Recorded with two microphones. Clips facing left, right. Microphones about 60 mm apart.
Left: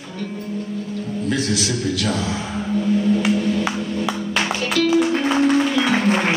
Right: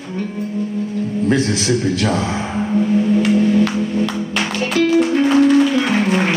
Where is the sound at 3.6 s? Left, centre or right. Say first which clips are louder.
Right 4 dB; centre.